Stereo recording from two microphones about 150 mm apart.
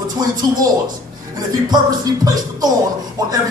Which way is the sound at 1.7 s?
25° right (ahead or behind).